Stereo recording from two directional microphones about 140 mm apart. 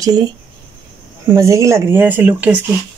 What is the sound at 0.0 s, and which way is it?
Speech, 30° right (ahead or behind).